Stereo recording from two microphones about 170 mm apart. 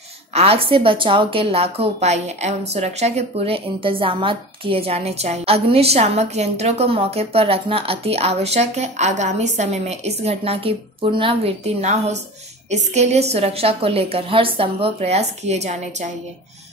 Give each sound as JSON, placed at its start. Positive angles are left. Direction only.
{"t": 0.3, "sound": "a woman's voice", "side_deg": -35}